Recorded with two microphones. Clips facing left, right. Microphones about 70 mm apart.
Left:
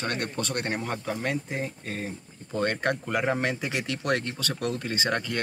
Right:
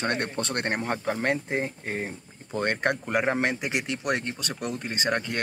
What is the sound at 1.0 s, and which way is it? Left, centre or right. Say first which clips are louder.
Speech: right 3 dB; right.